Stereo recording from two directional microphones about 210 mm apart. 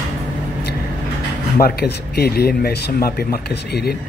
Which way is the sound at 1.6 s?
45° left (ahead or behind).